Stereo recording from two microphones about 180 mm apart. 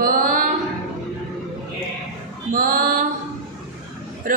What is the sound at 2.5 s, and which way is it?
Speech, 50° right (ahead or behind).